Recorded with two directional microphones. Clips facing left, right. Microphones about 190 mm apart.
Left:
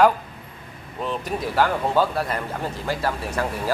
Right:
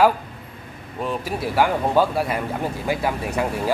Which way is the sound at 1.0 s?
10° right (ahead or behind).